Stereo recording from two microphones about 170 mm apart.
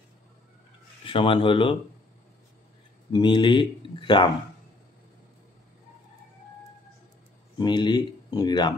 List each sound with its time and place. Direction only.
1.0 s speech: 30° left (ahead or behind)
3.1 s speech: 25° left (ahead or behind)
7.5 s speech: 25° left (ahead or behind)